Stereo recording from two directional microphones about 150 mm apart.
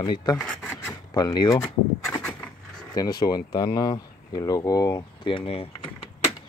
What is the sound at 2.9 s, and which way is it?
Speech, 25° left (ahead or behind).